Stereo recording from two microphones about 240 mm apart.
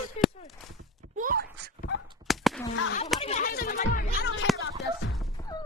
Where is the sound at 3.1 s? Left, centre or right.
Left.